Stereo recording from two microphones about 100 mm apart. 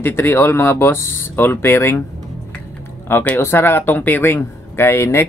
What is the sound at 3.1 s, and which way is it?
Speech, 25° left (ahead or behind).